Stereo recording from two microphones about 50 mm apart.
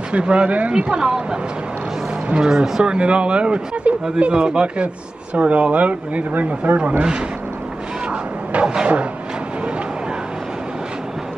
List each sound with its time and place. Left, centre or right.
0.1 s speech: right
2.4 s speech: centre
2.8 s speech: right
8.1 s a sound: centre